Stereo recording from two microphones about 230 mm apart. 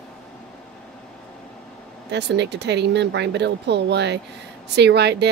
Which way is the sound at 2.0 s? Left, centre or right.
Right.